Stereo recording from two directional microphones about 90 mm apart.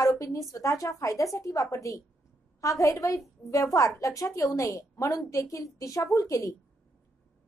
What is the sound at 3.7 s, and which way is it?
A woman's voice, 40° left (ahead or behind).